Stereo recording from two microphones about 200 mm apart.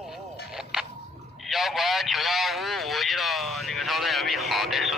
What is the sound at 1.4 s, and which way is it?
A man's voice, centre (ahead or behind).